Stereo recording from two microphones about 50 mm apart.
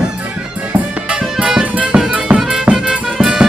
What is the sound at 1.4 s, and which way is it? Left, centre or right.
Music, centre.